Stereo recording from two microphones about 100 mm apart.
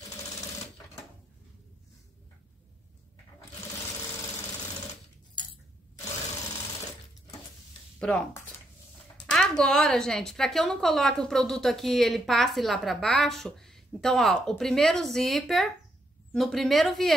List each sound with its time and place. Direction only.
5.3 s a sound: 55° left (ahead or behind)
8.0 s speech: 10° left (ahead or behind)
9.2 s speech: 10° left (ahead or behind)